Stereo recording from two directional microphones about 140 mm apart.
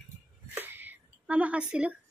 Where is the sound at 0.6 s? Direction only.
15° right (ahead or behind).